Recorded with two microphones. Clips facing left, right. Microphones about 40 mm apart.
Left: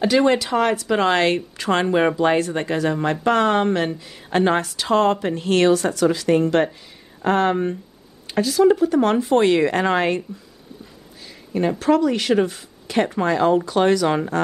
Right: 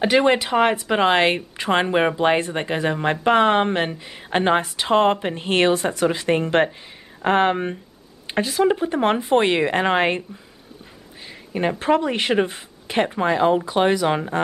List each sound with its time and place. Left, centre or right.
0.0 s speech: right
11.8 s speech: right